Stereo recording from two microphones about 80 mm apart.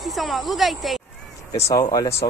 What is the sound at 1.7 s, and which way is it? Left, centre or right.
Speech, left.